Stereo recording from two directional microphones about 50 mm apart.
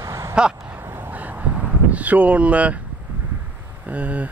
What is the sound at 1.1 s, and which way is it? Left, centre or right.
Vehicle, right.